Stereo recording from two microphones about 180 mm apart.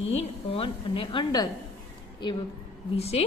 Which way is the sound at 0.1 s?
35° left (ahead or behind).